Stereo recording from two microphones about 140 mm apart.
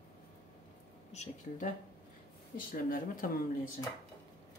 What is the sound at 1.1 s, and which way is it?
Speech, 50° left (ahead or behind).